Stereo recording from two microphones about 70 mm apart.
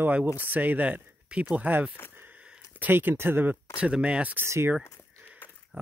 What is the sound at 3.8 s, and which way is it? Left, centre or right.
Speech, centre.